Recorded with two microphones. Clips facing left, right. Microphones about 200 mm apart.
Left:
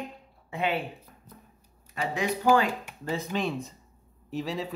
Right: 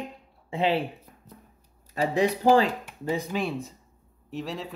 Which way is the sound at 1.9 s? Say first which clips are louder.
Right 6 dB; 35° right (ahead or behind).